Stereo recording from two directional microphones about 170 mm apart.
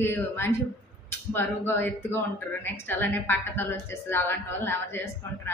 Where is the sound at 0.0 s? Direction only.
15° left (ahead or behind).